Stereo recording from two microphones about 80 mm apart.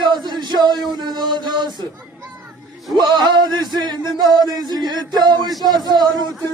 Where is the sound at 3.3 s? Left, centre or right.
Right.